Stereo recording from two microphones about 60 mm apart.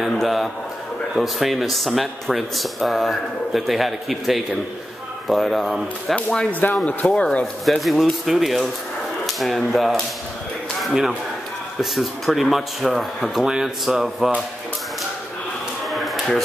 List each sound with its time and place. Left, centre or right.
0.0 s speech: centre
6.8 s speech: left
7.6 s speech: centre
15.9 s a sound: centre